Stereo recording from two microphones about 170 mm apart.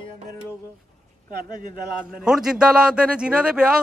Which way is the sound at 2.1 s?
5° right (ahead or behind).